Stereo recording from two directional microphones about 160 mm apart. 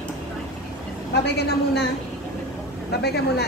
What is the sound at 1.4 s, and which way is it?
Speech, 90° left.